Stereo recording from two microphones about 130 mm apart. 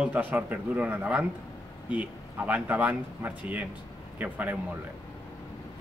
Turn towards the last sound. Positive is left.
turn(degrees=-15)  # may be behind; listen again after turning